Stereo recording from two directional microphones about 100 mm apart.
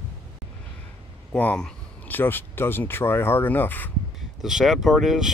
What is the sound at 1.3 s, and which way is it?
Speech, 15° left (ahead or behind).